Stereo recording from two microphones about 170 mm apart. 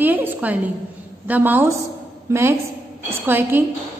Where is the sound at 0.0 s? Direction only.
10° right (ahead or behind).